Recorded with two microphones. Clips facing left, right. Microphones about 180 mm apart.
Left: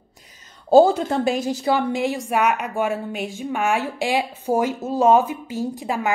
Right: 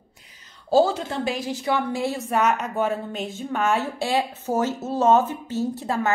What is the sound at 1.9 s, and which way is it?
A woman's voice, 15° left (ahead or behind).